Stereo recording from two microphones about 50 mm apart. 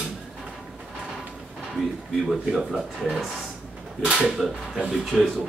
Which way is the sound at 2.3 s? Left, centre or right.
Centre.